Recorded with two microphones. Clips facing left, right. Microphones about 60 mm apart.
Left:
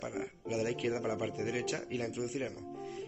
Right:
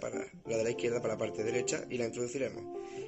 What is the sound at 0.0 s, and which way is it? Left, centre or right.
Speech, centre.